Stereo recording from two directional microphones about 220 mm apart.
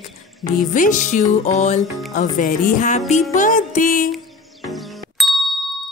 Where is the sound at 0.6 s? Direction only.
35° left (ahead or behind).